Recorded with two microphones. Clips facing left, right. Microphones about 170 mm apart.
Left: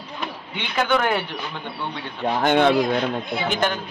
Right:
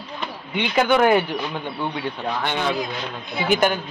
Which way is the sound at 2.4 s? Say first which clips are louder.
Left 9 dB; 55° left (ahead or behind).